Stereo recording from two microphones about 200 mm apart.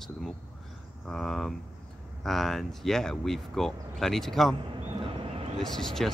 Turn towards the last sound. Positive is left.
turn(degrees=0)  # may be behind; listen again after turning